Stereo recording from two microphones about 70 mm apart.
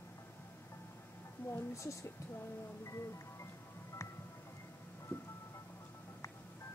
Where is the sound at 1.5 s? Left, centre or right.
Left.